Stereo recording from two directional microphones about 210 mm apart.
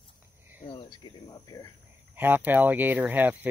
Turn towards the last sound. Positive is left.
turn(degrees=-10)  # may be behind; listen again after turning